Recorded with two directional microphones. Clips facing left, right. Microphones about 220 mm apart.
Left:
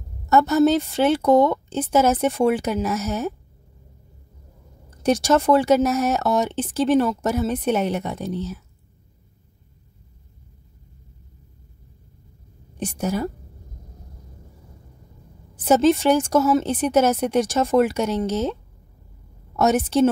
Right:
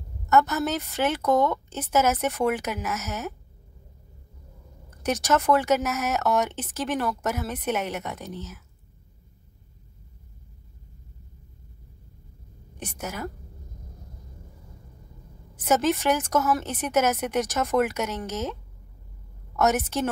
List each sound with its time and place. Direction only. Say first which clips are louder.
0.3 s speech: left 7 dB; 30° left (ahead or behind)
5.0 s speech: left 6 dB; 30° left (ahead or behind)
12.7 s speech: left 10 dB; 30° left (ahead or behind)
15.5 s speech: left 6 dB; 30° left (ahead or behind)